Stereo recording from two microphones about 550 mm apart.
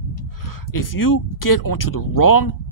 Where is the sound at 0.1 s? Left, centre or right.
Left.